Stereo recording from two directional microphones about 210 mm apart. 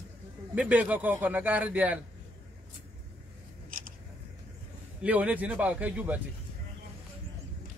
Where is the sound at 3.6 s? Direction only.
40° right (ahead or behind).